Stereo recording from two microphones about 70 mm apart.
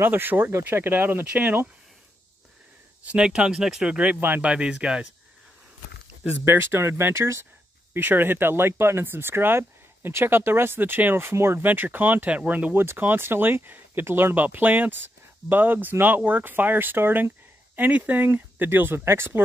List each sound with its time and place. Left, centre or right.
0.0 s speech: right
3.1 s speech: centre
6.2 s speech: right
7.9 s speech: right